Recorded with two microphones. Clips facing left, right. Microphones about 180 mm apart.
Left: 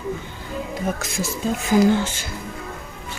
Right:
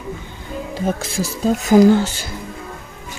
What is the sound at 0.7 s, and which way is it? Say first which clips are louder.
Speech: right 5 dB; 30° right (ahead or behind).